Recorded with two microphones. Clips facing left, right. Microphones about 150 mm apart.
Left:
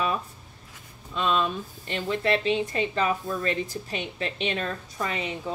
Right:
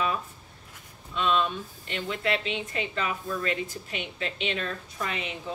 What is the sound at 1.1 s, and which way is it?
Speech, 40° left (ahead or behind).